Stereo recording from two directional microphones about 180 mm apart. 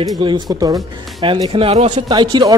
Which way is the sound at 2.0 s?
25° right (ahead or behind).